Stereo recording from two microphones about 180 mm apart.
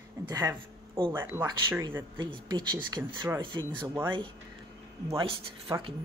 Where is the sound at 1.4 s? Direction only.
25° right (ahead or behind).